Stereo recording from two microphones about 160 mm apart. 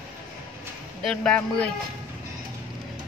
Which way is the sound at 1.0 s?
5° left (ahead or behind).